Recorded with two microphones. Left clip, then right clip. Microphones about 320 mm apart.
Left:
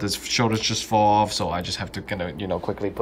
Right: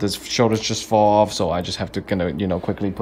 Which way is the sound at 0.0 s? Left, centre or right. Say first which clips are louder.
Right 4 dB; centre.